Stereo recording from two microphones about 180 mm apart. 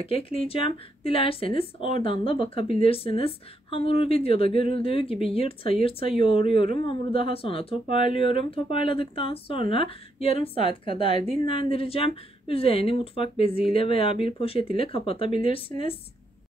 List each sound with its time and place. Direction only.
0.0 s speech: 30° left (ahead or behind)